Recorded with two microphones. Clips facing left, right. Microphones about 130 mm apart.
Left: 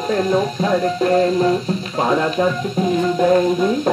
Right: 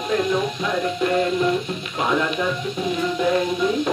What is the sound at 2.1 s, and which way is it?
Speech, 35° left (ahead or behind).